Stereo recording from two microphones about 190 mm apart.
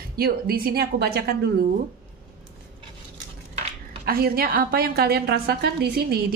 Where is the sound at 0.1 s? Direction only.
55° right (ahead or behind).